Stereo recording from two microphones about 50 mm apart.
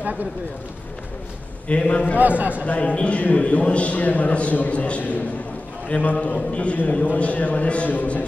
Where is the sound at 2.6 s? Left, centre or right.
Left.